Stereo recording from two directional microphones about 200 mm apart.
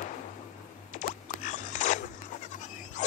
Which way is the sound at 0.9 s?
40° left (ahead or behind).